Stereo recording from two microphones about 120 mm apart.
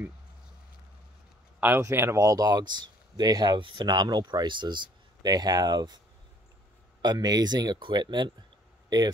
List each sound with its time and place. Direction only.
1.6 s speech: 20° right (ahead or behind)
7.0 s speech: 35° right (ahead or behind)